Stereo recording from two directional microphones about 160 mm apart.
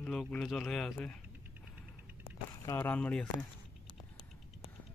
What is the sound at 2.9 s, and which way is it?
Speech, 5° left (ahead or behind).